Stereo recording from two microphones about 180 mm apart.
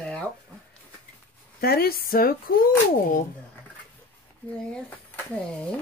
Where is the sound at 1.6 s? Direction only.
55° left (ahead or behind).